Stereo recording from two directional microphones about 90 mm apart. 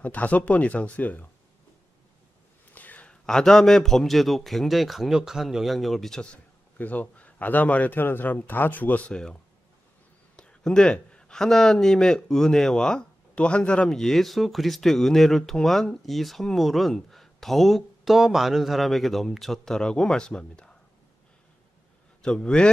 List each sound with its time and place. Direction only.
0.0 s speech: 15° left (ahead or behind)
2.7 s speech: 20° left (ahead or behind)
6.8 s speech: 20° left (ahead or behind)
22.2 s speech: 10° left (ahead or behind)